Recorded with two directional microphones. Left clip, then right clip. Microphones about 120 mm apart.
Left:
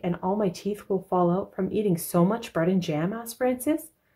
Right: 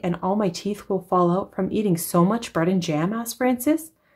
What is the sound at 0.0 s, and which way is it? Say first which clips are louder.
Speech: right 3 dB; 30° right (ahead or behind).